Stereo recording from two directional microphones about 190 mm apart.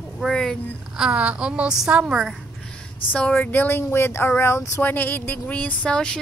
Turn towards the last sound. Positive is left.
turn(degrees=5)  # may be behind; listen again after turning